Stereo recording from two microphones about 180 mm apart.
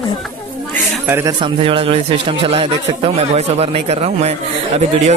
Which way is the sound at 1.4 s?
30° right (ahead or behind).